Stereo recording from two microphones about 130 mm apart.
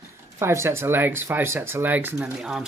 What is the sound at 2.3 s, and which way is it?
Speech, 5° right (ahead or behind).